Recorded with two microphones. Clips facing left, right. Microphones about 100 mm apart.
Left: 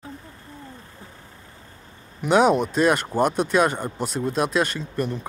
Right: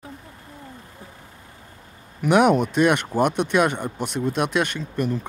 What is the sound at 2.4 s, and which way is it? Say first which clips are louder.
Speech: right 1 dB; 30° left (ahead or behind).